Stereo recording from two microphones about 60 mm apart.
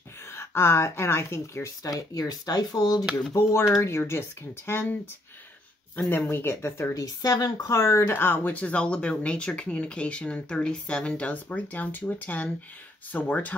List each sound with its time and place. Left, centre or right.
0.3 s speech: left
1.8 s speech: left
3.3 s speech: left
4.6 s speech: left
6.0 s speech: left
6.9 s speech: left
7.7 s speech: left